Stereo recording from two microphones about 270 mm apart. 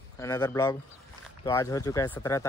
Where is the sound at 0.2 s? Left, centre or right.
Centre.